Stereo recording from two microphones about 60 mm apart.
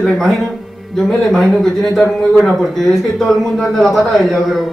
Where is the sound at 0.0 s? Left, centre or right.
Centre.